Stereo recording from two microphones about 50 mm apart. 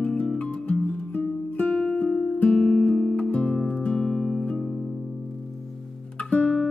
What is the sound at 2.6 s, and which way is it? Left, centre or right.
Guitar, centre.